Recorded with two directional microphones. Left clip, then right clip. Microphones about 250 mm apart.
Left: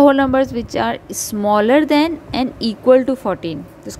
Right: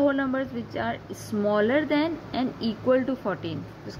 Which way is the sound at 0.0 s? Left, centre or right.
Left.